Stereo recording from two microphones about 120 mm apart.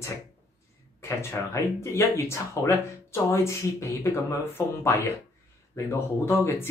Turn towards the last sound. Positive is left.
turn(degrees=20)  # may be behind; listen again after turning